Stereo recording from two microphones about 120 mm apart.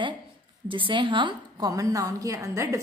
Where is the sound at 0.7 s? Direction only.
45° right (ahead or behind).